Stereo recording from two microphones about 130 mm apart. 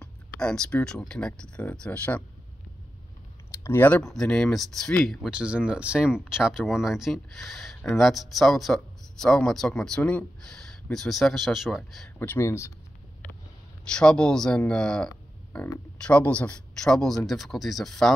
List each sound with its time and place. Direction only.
0.0 s speech: 5° left (ahead or behind)
3.5 s speech: 20° left (ahead or behind)
4.0 s speech: 5° left (ahead or behind)
12.2 s speech: 20° left (ahead or behind)
13.9 s speech: 5° left (ahead or behind)